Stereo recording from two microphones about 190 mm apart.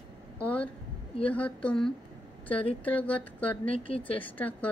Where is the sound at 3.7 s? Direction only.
30° left (ahead or behind).